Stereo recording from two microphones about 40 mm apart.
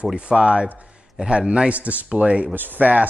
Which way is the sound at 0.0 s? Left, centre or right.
Right.